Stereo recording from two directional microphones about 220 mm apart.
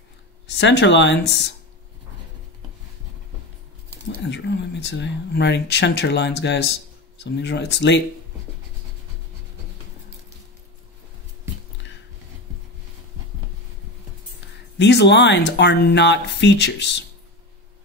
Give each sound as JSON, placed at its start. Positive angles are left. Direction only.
{"t": 0.5, "sound": "speech", "side_deg": 50}
{"t": 4.3, "sound": "speech", "side_deg": 50}
{"t": 14.8, "sound": "speech", "side_deg": 50}